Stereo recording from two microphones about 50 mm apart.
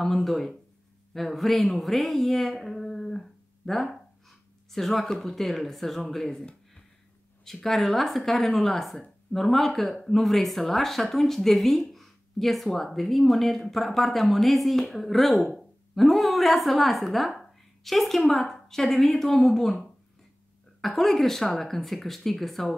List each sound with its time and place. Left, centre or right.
0.0 s speech: centre
7.4 s a woman's voice: centre
17.4 s a sound: centre
18.5 s speech: centre